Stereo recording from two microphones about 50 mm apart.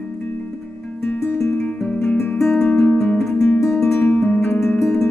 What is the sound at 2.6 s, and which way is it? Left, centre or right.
Music, left.